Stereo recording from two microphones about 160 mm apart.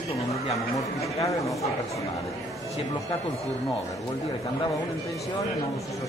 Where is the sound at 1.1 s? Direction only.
20° left (ahead or behind).